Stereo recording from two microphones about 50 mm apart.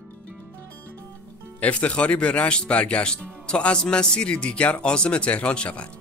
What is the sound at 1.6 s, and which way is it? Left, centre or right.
Speech, left.